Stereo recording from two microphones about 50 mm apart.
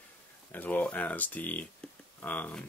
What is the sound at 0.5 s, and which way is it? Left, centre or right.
Speech, left.